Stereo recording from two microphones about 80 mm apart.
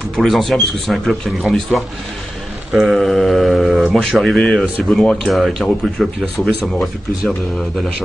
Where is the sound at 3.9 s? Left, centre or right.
Centre.